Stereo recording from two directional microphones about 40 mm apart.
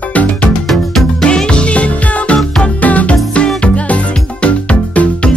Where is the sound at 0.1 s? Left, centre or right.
Left.